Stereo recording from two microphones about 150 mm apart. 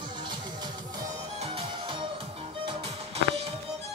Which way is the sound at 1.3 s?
40° right (ahead or behind).